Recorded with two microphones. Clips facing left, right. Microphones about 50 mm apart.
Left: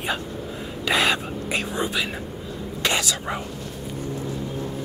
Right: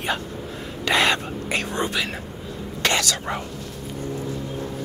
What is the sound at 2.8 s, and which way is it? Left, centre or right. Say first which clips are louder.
Speech: right 2 dB; right.